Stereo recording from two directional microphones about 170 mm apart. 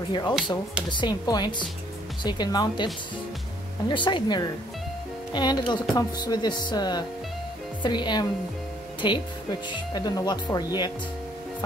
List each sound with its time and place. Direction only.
0.1 s music: 25° left (ahead or behind)
3.9 s music: 30° left (ahead or behind)